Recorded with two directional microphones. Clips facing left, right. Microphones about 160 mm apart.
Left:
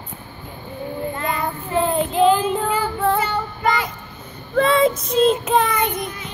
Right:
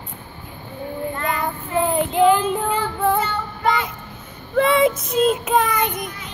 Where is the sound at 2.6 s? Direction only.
5° left (ahead or behind).